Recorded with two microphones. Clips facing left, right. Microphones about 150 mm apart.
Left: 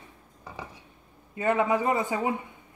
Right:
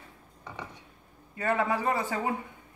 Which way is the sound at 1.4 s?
20° left (ahead or behind).